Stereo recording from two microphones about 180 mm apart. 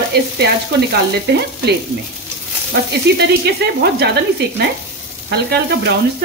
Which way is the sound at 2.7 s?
65° right (ahead or behind).